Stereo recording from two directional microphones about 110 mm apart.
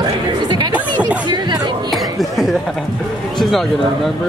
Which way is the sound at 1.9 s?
Centre (ahead or behind).